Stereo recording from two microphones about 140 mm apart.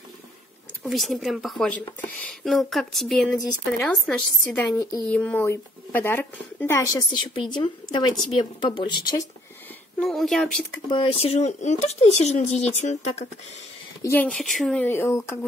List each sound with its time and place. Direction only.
0.8 s speech: centre (ahead or behind)
4.6 s speech: 25° left (ahead or behind)
5.1 s speech: 10° left (ahead or behind)
7.3 s a woman's voice: 35° left (ahead or behind)
10.0 s speech: centre (ahead or behind)
10.9 s speech: 40° left (ahead or behind)
14.0 s speech: 10° left (ahead or behind)
14.8 s speech: 15° left (ahead or behind)